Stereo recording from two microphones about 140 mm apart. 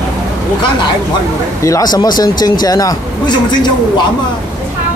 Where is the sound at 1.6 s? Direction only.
25° left (ahead or behind).